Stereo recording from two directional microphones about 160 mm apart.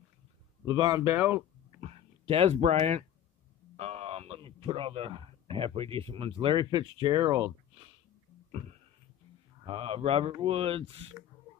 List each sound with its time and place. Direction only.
0.7 s speech: 25° right (ahead or behind)
1.8 s speech: 40° right (ahead or behind)
8.5 s a sound: 40° right (ahead or behind)
9.7 s speech: 35° right (ahead or behind)